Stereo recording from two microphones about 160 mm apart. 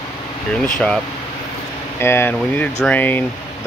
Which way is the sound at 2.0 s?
15° left (ahead or behind).